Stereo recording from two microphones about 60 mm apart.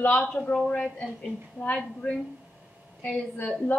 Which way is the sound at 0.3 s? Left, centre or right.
Centre.